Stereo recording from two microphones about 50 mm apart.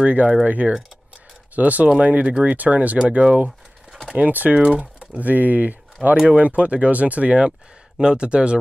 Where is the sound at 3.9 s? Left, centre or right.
Centre.